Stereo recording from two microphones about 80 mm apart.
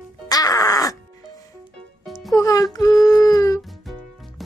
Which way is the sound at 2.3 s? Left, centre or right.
Left.